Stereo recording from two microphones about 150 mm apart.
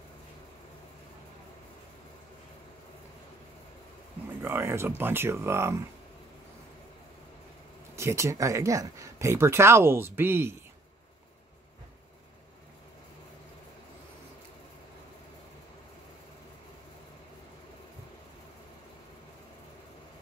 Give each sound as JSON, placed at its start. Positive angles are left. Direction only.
{"t": 4.4, "sound": "speech", "side_deg": -15}
{"t": 7.9, "sound": "speech", "side_deg": -20}